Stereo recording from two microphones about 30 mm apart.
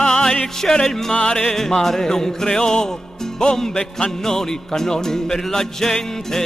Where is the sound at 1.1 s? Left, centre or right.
Left.